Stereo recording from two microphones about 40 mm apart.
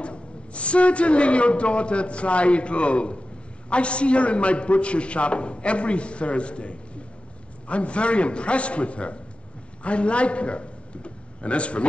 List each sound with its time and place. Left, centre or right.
0.0 s a man's voice: left